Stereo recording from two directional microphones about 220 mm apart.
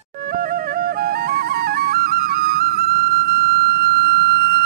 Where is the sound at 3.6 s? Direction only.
45° right (ahead or behind).